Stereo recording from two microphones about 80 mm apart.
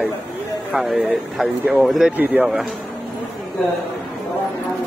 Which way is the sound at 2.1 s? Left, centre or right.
Right.